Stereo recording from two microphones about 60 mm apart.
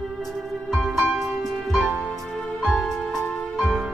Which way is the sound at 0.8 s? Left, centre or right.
Centre.